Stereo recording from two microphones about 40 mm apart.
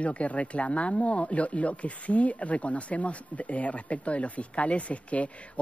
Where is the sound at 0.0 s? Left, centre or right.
Left.